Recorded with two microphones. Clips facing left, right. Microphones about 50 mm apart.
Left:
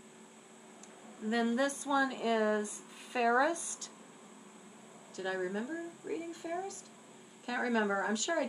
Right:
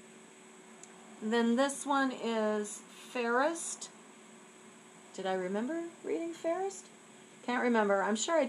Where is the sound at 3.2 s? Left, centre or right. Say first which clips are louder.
Left 1 dB; centre.